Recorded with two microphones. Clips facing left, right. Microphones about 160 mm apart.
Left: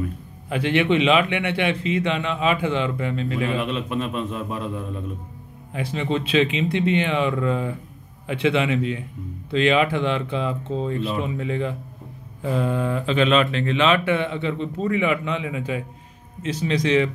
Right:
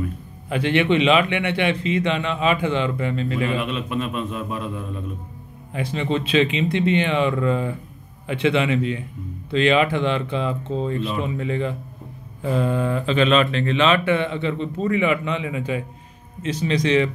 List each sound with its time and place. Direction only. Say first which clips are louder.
0.5 s speech: right 1 dB; 5° left (ahead or behind)
3.5 s a man's voice: even; 35° left (ahead or behind)
5.7 s speech: right 1 dB; 5° left (ahead or behind)